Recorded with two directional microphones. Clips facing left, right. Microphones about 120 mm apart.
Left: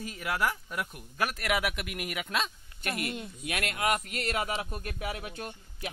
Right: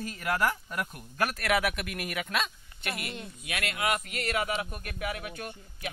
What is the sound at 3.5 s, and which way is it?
Speech, 40° left (ahead or behind).